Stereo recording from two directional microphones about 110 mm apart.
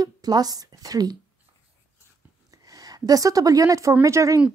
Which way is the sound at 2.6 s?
35° right (ahead or behind).